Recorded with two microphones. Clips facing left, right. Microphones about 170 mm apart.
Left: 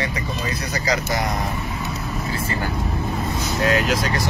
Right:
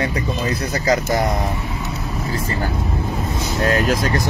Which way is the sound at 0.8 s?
40° right (ahead or behind).